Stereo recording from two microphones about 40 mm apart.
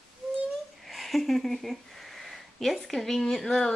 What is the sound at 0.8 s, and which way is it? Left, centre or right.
Speech, centre.